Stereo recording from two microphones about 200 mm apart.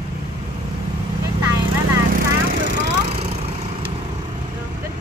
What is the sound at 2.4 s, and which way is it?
Vehicle, 45° right (ahead or behind).